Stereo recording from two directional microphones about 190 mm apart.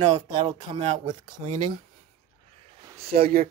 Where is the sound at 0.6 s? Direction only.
35° right (ahead or behind).